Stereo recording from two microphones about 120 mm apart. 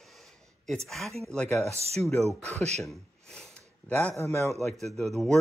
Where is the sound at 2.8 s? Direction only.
5° left (ahead or behind).